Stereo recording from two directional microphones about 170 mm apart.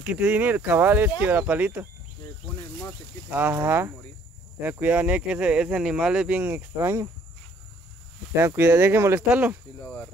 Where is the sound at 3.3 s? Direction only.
15° right (ahead or behind).